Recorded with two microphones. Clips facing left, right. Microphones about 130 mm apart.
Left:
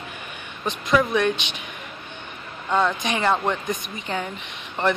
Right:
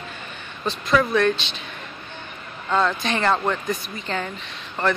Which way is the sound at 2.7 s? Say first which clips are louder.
Even; 15° left (ahead or behind).